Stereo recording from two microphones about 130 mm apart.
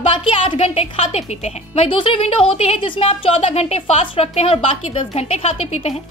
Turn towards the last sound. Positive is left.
turn(degrees=55)  # may be behind; listen again after turning